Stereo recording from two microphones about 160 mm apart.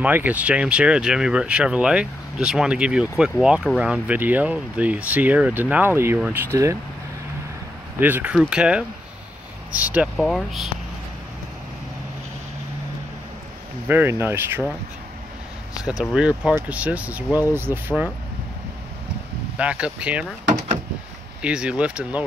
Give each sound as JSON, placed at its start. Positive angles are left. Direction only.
{"t": 0.0, "sound": "speech", "side_deg": -10}
{"t": 8.0, "sound": "speech", "side_deg": -10}
{"t": 13.8, "sound": "speech", "side_deg": -15}
{"t": 16.0, "sound": "speech", "side_deg": -5}
{"t": 19.5, "sound": "speech", "side_deg": -5}
{"t": 21.4, "sound": "speech", "side_deg": -5}